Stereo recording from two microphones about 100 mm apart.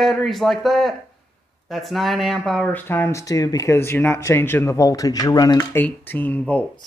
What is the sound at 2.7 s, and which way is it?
Speech, 20° left (ahead or behind).